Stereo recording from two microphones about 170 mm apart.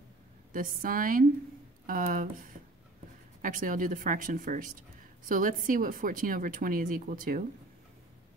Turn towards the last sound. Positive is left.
turn(degrees=-55)  # may be behind; listen again after turning